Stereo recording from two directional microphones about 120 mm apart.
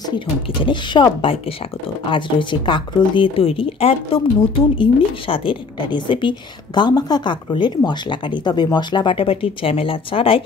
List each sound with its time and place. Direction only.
0.1 s a woman's voice: 40° left (ahead or behind)